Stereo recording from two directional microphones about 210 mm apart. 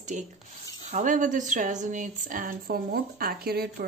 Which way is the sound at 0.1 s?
35° right (ahead or behind).